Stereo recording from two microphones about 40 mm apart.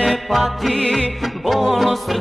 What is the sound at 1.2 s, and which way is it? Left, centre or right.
Music, centre.